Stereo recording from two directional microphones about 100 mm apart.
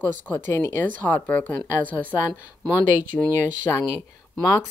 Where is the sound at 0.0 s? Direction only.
25° left (ahead or behind).